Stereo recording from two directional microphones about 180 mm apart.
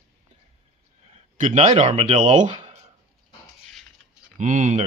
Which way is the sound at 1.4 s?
40° right (ahead or behind).